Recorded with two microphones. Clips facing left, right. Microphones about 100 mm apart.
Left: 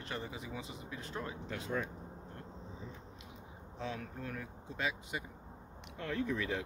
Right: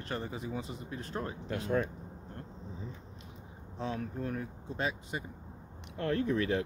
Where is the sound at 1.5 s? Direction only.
55° right (ahead or behind).